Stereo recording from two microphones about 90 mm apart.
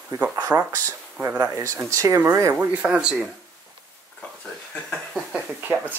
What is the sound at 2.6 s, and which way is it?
Speech, 15° right (ahead or behind).